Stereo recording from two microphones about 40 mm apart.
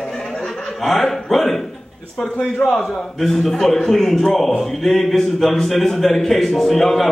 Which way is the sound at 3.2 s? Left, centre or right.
Centre.